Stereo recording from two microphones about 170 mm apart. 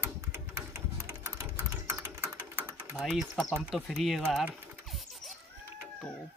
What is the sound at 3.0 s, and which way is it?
Speech, centre (ahead or behind).